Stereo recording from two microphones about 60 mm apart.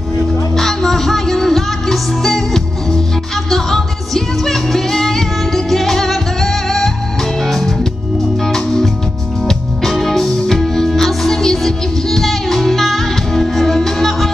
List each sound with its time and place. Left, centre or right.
0.6 s music: centre